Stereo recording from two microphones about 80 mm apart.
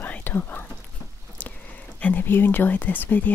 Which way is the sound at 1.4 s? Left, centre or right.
Left.